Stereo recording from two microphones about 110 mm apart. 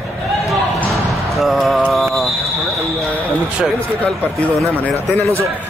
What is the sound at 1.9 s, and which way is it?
Mantra, centre (ahead or behind).